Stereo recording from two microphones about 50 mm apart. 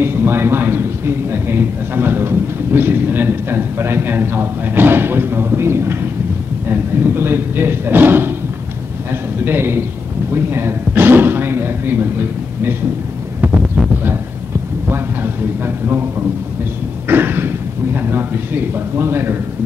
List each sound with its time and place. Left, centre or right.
0.0 s a man's voice: right
14.9 s a man's voice: right
17.1 s a man's voice: right